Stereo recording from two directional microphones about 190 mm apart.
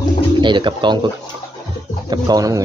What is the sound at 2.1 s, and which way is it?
Speech, 20° right (ahead or behind).